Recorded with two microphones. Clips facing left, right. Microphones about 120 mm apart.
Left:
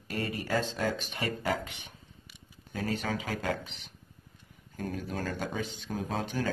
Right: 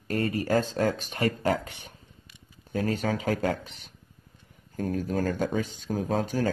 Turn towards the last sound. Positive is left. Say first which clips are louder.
# right 6 dB
turn(degrees=-45)  # may be behind; listen again after turning